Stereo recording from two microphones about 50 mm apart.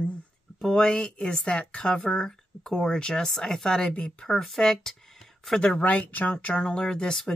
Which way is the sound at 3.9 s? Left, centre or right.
Left.